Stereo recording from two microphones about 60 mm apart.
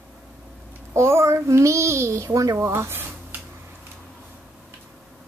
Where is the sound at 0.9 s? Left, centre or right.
Right.